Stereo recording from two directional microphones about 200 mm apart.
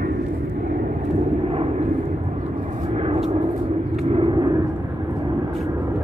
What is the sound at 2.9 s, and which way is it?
Vehicle, 30° right (ahead or behind).